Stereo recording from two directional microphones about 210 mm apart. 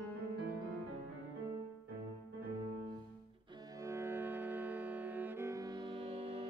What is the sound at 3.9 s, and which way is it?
Music, 10° right (ahead or behind).